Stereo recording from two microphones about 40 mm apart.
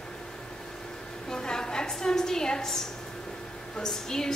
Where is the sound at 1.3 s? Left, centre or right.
Centre.